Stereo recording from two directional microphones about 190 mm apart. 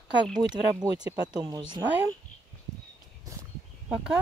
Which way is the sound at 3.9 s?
5° right (ahead or behind).